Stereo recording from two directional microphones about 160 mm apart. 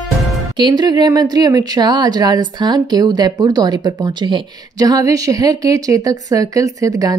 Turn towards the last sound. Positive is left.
turn(degrees=-20)  # may be behind; listen again after turning